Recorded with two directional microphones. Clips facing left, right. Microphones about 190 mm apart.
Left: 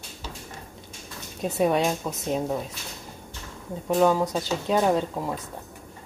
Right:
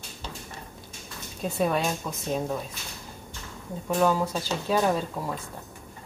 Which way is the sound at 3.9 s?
15° left (ahead or behind).